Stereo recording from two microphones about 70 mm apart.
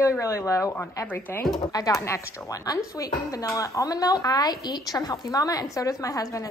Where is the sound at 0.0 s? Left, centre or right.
Left.